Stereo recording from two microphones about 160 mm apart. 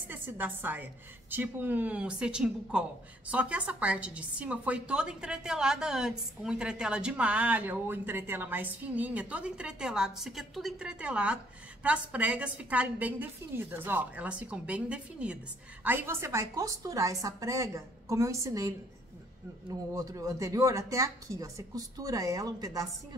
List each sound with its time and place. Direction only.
0.1 s a woman's voice: 10° right (ahead or behind)
19.7 s a woman's voice: 20° right (ahead or behind)